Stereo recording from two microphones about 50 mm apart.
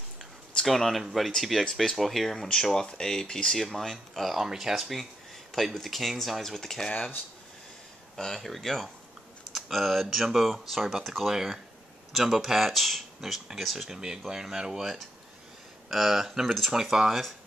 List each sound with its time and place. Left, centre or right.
0.7 s speech: centre
3.5 s speech: centre
6.9 s speech: left
8.2 s speech: centre